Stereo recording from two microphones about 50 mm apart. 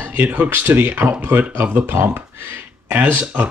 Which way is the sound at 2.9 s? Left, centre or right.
Right.